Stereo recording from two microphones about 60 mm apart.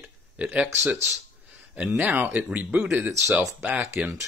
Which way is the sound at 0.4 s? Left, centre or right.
Right.